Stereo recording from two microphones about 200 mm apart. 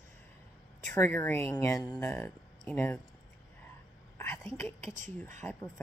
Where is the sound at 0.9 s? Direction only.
10° left (ahead or behind).